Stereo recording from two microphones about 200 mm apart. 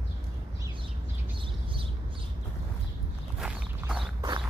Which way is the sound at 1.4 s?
25° right (ahead or behind).